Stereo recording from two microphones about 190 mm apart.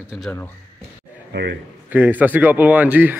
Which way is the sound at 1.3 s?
60° right (ahead or behind).